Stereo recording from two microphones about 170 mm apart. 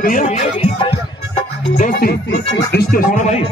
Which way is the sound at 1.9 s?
70° left (ahead or behind).